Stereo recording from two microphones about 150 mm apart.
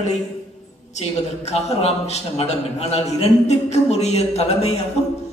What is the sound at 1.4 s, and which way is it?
A woman's voice, 45° left (ahead or behind).